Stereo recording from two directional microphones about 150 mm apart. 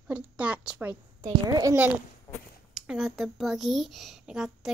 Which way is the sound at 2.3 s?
20° left (ahead or behind).